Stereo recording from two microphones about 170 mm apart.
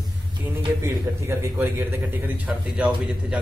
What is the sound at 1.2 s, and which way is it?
A man's voice, 15° right (ahead or behind).